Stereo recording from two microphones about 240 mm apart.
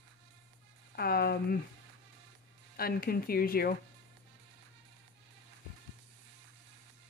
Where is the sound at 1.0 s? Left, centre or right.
Left.